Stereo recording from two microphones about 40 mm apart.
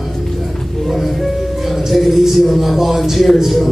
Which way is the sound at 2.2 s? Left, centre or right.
Centre.